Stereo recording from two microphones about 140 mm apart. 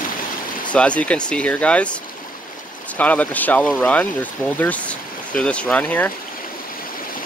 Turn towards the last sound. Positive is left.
turn(degrees=10)  # may be behind; listen again after turning